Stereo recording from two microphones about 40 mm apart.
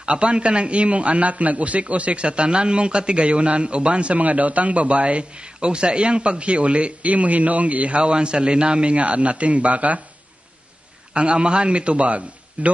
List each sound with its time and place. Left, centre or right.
0.0 s a man's voice: right
11.1 s a man's voice: right